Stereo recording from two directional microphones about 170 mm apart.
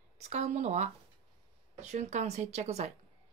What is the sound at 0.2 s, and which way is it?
Speech, 40° right (ahead or behind).